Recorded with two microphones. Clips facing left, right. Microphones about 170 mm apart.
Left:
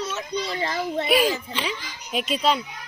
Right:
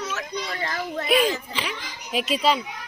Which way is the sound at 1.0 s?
Centre (ahead or behind).